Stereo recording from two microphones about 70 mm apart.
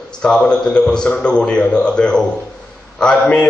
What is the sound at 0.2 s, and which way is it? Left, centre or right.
A man's voice, centre.